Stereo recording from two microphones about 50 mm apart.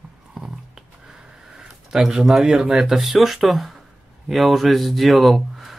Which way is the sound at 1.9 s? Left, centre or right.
Centre.